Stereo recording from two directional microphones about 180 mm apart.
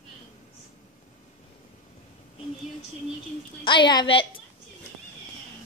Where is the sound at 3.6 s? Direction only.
25° left (ahead or behind).